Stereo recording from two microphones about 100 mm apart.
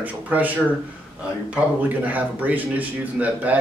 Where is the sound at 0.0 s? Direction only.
15° right (ahead or behind).